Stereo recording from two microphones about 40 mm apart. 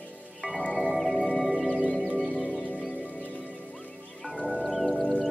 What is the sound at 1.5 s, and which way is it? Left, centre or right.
Music, right.